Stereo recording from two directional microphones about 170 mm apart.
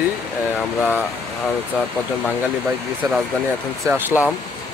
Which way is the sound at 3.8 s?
20° right (ahead or behind).